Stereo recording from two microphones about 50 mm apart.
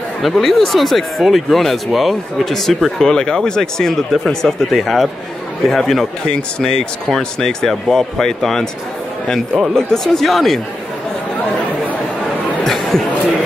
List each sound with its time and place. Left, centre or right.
0.2 s speech: centre
6.2 s speech: centre
9.8 s speech: centre
12.6 s a sound: centre